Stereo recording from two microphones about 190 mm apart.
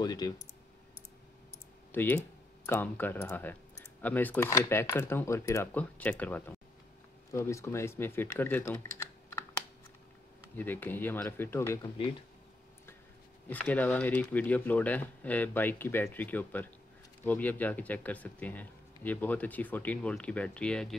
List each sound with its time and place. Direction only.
0.0 s speech: 20° left (ahead or behind)
1.9 s speech: 10° left (ahead or behind)
10.5 s speech: 10° left (ahead or behind)
13.5 s speech: 10° left (ahead or behind)